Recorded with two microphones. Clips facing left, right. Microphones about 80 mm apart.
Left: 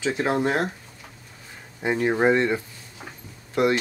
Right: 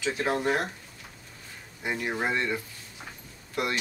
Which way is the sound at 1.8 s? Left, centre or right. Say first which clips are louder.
Left 9 dB; left.